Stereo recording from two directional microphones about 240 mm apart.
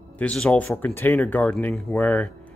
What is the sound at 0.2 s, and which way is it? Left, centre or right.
Speech, centre.